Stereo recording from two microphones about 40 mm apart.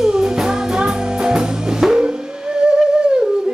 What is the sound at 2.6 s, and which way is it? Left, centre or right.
Music, right.